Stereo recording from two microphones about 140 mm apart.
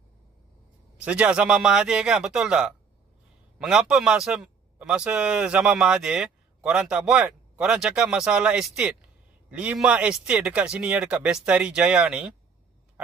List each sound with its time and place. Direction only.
0.9 s a man's voice: 10° right (ahead or behind)